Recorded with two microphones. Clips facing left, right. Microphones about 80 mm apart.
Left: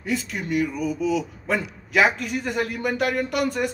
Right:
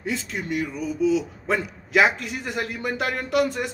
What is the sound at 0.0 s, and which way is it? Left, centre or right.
A man's voice, right.